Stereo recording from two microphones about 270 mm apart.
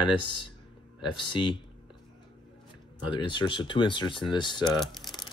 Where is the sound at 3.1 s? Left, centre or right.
Centre.